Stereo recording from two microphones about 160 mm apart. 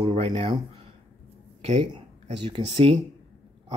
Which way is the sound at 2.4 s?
35° right (ahead or behind).